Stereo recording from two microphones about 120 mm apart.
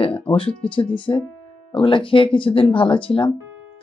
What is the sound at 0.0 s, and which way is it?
Speech, 50° left (ahead or behind).